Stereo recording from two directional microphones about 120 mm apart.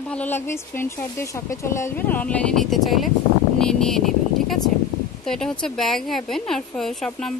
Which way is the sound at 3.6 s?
5° left (ahead or behind).